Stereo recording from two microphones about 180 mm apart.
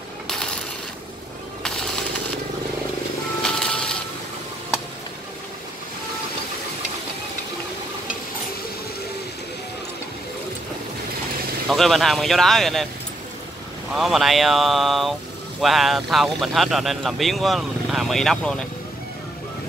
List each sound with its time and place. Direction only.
0.3 s coin: 5° left (ahead or behind)
1.6 s jackhammer: 5° left (ahead or behind)
3.4 s a sound: 5° left (ahead or behind)
11.7 s speech: centre (ahead or behind)
13.9 s speech: centre (ahead or behind)